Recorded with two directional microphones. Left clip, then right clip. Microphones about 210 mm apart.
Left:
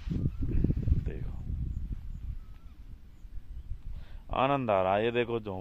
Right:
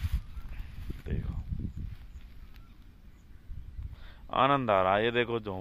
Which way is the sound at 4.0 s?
5° left (ahead or behind).